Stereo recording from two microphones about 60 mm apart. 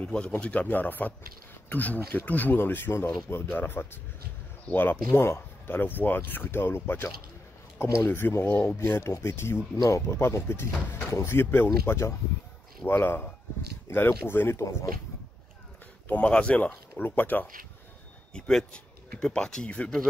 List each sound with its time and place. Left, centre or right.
0.0 s speech: left
9.8 s speech: left
11.8 s speech: left
12.8 s speech: left
14.6 s speech: left
16.1 s speech: left
17.0 s speech: left
18.3 s speech: centre